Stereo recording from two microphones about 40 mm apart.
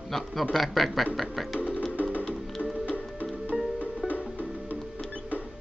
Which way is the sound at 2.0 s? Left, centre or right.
Left.